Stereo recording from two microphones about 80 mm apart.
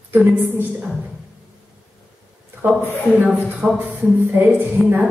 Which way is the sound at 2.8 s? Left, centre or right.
Left.